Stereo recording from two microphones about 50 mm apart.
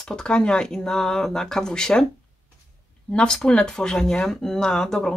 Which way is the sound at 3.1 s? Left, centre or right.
Centre.